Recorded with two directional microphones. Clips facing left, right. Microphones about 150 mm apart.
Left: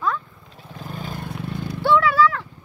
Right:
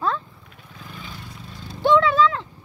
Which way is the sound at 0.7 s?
45° left (ahead or behind).